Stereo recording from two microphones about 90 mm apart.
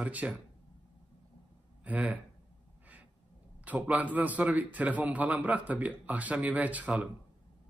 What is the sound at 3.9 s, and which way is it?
A man's voice, 15° right (ahead or behind).